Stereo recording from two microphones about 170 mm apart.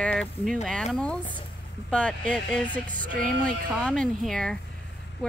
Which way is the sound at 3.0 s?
50° right (ahead or behind).